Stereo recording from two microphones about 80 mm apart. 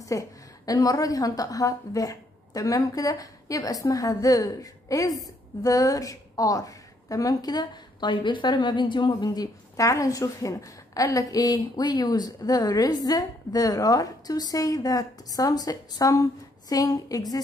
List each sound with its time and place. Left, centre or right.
0.0 s a woman's voice: left